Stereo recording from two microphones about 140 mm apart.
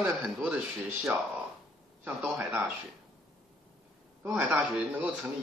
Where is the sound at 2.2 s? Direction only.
5° right (ahead or behind).